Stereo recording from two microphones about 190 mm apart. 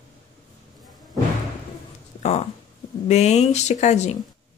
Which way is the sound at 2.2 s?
35° left (ahead or behind).